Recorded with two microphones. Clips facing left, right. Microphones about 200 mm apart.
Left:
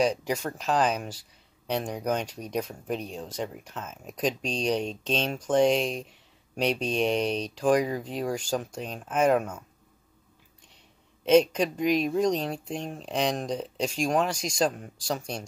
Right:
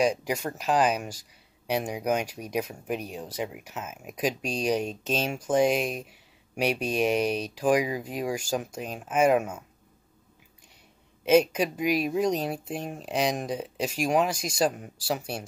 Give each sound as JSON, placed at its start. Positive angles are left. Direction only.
{"t": 0.0, "sound": "speech", "side_deg": -10}
{"t": 11.2, "sound": "speech", "side_deg": -5}